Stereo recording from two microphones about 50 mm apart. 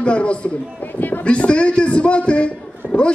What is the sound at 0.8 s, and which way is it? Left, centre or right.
Music, left.